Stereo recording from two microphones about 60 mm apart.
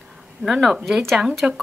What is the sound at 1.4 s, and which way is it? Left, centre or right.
Speech, centre.